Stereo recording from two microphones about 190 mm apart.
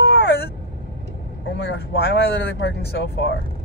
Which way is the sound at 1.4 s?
70° left (ahead or behind).